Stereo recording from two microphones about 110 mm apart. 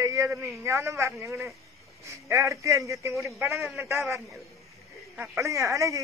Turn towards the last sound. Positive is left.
turn(degrees=-30)  # may be behind; listen again after turning